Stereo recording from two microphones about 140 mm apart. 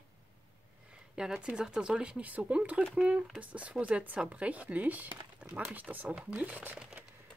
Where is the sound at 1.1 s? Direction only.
5° right (ahead or behind).